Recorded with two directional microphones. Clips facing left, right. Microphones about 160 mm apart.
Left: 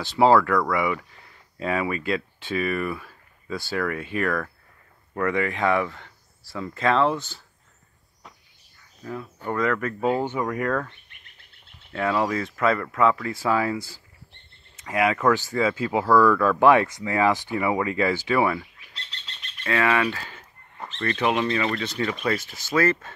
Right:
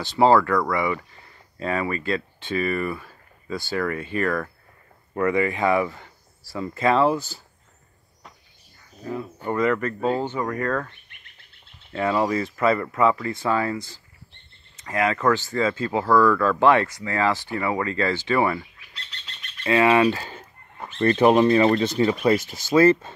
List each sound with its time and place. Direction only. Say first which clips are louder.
0.0 s speech: even; 5° left (ahead or behind)
9.0 s speech: right 3 dB; 5° right (ahead or behind)
11.9 s speech: right 2 dB; centre (ahead or behind)
19.6 s speech: right 5 dB; 20° right (ahead or behind)
22.4 s speech: right 6 dB; 40° right (ahead or behind)
22.8 s speech: right 6 dB; 25° right (ahead or behind)